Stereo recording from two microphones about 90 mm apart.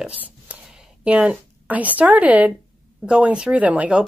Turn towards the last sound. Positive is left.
turn(degrees=-15)  # may be behind; listen again after turning